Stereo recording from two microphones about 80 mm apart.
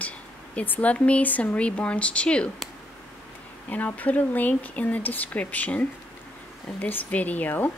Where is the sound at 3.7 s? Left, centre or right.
Centre.